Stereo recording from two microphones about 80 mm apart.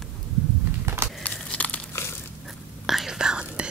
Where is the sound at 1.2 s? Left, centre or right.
Centre.